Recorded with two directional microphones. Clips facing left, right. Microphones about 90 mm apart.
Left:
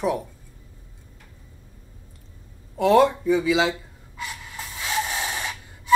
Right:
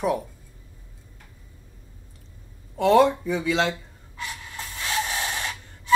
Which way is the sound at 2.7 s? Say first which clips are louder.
Even; centre (ahead or behind).